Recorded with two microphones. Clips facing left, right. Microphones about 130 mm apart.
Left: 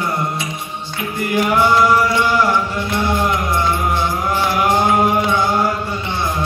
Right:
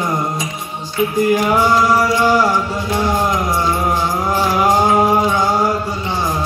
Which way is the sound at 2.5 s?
40° right (ahead or behind).